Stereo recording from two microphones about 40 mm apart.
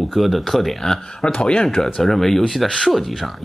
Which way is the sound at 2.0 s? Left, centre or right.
Centre.